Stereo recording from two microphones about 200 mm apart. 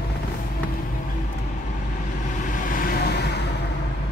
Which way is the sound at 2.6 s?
45° left (ahead or behind).